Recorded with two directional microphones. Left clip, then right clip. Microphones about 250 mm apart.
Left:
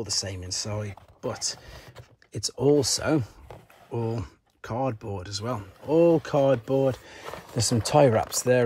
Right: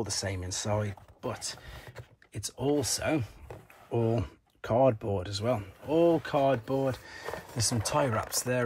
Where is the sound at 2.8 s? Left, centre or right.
Centre.